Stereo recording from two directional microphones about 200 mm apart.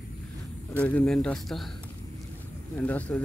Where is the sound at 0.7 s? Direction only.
5° left (ahead or behind).